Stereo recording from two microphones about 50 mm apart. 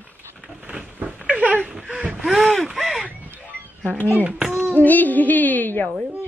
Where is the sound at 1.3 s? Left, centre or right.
Right.